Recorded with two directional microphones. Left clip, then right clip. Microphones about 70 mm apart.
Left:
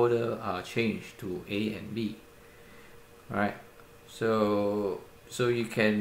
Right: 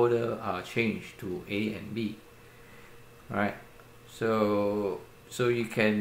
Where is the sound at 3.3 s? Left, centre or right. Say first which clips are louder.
Even; centre.